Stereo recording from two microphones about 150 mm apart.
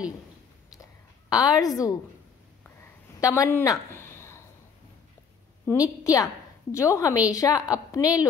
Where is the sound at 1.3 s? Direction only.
25° left (ahead or behind).